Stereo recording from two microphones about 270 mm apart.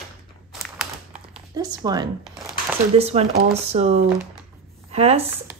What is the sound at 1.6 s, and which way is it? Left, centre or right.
A woman's voice, centre.